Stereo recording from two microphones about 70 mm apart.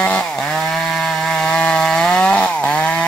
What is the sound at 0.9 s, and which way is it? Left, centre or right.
Chainsaw, centre.